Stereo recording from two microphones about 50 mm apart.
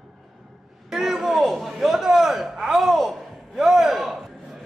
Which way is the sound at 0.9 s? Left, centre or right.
Centre.